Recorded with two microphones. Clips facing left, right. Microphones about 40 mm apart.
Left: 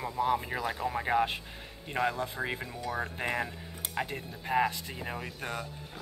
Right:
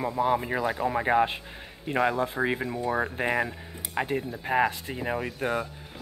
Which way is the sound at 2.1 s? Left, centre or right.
Right.